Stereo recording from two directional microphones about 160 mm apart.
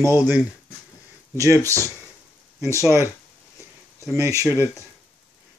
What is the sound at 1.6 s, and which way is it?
Speech, 15° left (ahead or behind).